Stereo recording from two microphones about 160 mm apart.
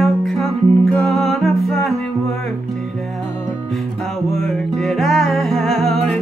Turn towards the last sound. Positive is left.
turn(degrees=5)  # may be behind; listen again after turning